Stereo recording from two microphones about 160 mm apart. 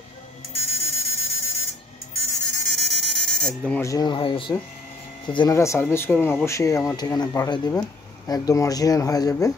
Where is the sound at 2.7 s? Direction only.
Centre (ahead or behind).